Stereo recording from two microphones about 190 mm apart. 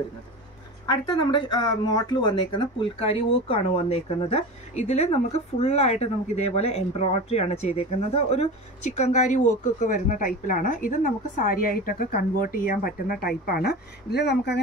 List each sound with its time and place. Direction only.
0.8 s speech: 25° left (ahead or behind); by 14.6 s 60° left (ahead or behind)